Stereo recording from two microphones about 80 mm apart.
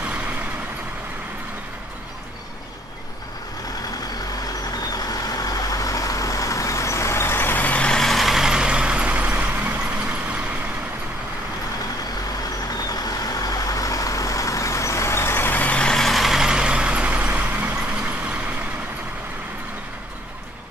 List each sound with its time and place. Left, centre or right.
4.6 s vehicle: left; by 9.8 s centre
12.6 s vehicle: left; by 17.7 s centre